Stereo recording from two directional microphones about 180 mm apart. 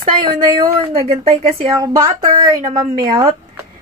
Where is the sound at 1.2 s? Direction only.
35° right (ahead or behind).